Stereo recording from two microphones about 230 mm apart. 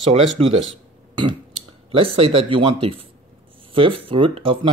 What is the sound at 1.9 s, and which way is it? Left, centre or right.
Speech, right.